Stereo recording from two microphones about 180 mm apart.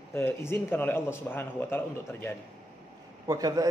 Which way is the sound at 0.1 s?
15° left (ahead or behind).